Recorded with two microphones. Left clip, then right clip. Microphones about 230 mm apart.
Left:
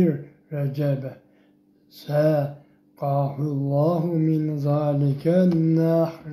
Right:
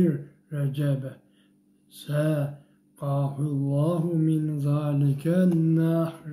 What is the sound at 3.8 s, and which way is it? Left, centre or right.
Mantra, centre.